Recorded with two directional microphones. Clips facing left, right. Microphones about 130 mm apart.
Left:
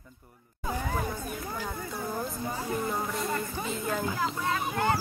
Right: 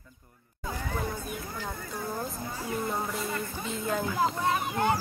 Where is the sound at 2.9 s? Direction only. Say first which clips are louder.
Left 1 dB; centre (ahead or behind).